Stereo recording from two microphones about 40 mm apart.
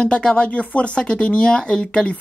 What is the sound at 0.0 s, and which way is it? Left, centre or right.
Speech, left.